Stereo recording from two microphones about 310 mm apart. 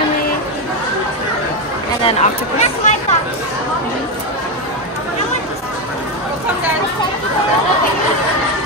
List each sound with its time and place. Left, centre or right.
2.0 s speech: left